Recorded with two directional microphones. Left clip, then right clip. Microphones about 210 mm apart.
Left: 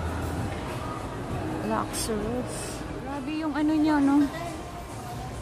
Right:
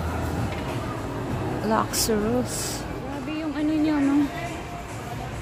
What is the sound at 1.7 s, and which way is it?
Speech, 10° right (ahead or behind).